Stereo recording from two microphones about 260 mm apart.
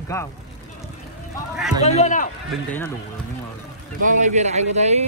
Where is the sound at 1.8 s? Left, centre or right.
Left.